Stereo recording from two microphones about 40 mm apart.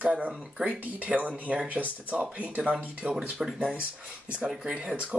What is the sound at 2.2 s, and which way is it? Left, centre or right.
Speech, right.